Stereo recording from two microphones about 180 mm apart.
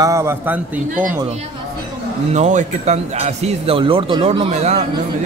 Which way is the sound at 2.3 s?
40° right (ahead or behind).